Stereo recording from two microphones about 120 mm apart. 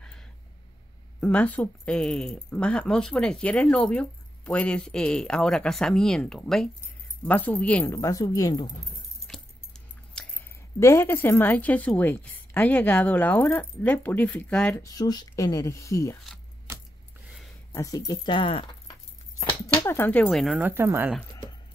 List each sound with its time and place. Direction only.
0.0 s a sound: 5° left (ahead or behind)
1.2 s speech: 10° left (ahead or behind)
7.9 s speech: 25° left (ahead or behind)
9.3 s keys jangling: 5° left (ahead or behind)
10.8 s speech: 25° left (ahead or behind)
14.8 s speech: 30° left (ahead or behind)
17.7 s speech: 25° left (ahead or behind); by 18.9 s 45° left (ahead or behind)
19.8 s speech: 20° left (ahead or behind); by 20.5 s centre (ahead or behind)
20.5 s speech: 15° right (ahead or behind)